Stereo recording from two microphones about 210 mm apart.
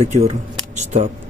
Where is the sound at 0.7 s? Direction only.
35° right (ahead or behind).